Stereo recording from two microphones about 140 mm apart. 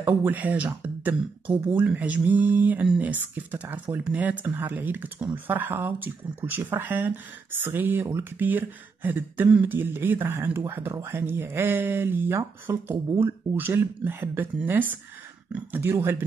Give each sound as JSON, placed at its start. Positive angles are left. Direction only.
{"t": 0.0, "sound": "speech", "side_deg": -10}